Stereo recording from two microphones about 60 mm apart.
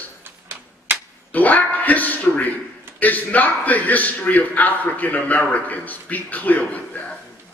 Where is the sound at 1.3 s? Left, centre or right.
Left.